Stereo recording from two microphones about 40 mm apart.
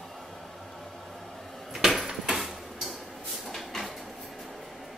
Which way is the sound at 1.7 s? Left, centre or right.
Centre.